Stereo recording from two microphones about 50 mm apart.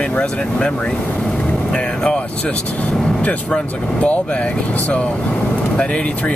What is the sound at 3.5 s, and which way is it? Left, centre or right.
Speech, left.